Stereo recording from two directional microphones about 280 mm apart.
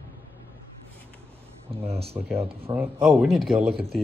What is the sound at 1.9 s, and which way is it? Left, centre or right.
Speech, right.